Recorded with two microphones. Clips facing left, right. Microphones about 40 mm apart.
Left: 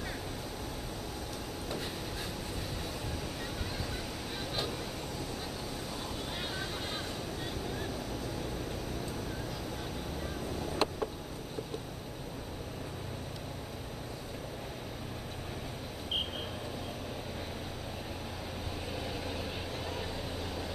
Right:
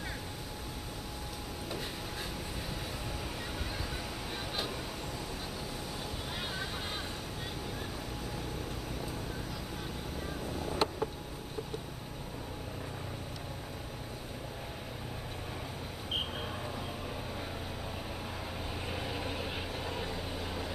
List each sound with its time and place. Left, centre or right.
10.6 s vehicle: centre
18.9 s vehicle: centre